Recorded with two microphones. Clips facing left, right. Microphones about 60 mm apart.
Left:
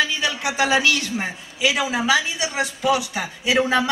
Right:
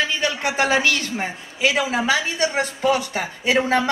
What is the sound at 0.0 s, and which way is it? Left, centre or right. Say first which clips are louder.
A man's voice: even; right.